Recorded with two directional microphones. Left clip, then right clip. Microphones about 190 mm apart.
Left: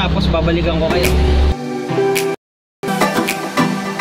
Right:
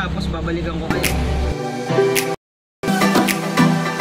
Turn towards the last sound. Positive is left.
turn(degrees=0)  # may be behind; listen again after turning